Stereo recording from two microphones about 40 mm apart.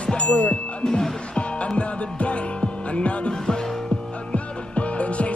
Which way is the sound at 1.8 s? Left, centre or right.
Left.